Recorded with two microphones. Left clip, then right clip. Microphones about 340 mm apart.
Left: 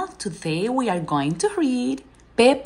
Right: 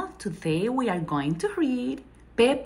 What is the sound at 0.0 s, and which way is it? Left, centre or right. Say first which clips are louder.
Speech: left 3 dB; centre.